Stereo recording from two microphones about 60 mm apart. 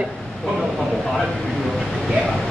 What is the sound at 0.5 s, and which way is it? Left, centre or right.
Vehicle, centre.